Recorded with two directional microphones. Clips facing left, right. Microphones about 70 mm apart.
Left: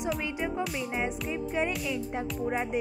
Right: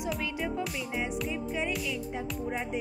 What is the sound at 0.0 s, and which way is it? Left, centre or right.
Music, left.